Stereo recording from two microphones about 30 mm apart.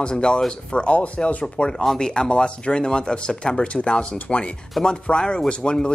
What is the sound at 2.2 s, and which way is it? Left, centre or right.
Speech, left.